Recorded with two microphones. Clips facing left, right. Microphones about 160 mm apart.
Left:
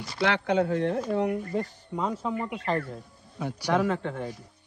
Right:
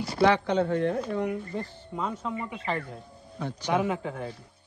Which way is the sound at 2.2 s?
Centre (ahead or behind).